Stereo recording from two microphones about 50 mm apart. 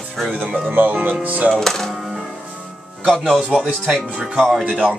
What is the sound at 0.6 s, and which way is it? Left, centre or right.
Speech, right.